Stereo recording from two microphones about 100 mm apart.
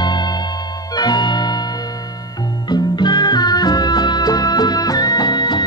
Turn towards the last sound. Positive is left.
turn(degrees=50)  # may be behind; listen again after turning